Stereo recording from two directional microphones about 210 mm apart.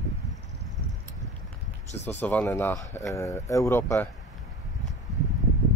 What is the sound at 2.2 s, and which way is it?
Speech, 5° left (ahead or behind).